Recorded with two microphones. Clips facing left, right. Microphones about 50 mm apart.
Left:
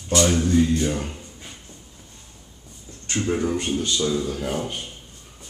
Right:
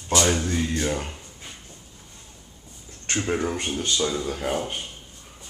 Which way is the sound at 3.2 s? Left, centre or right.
Right.